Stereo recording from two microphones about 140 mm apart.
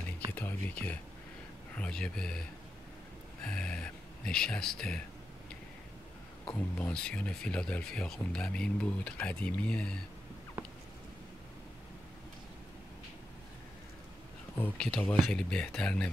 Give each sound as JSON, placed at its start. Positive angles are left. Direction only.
{"t": 0.3, "sound": "a sound", "side_deg": 10}
{"t": 1.8, "sound": "speech", "side_deg": 5}
{"t": 3.4, "sound": "speech", "side_deg": 5}
{"t": 6.4, "sound": "speech", "side_deg": 10}
{"t": 14.6, "sound": "speech", "side_deg": 10}